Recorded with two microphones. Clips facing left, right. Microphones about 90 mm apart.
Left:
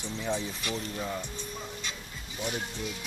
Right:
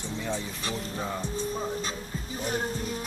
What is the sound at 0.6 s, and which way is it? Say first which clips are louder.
Speech: right 1 dB; 30° right (ahead or behind).